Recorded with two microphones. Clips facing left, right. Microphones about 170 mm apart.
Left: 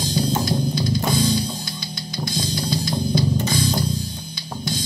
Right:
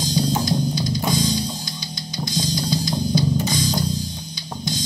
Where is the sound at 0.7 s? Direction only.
55° left (ahead or behind).